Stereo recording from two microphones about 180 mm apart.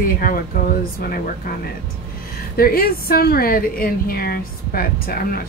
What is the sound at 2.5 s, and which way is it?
A woman's voice, 55° left (ahead or behind).